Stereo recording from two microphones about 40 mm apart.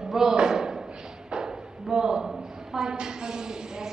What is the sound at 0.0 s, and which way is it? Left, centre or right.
Thump, centre.